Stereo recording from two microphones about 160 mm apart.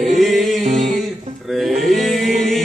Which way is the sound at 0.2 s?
Centre (ahead or behind).